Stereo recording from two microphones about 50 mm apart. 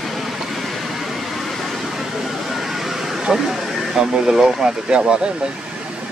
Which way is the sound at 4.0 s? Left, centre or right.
Centre.